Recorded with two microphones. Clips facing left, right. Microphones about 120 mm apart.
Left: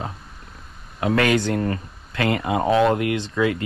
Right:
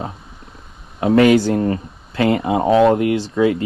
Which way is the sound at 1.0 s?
30° right (ahead or behind).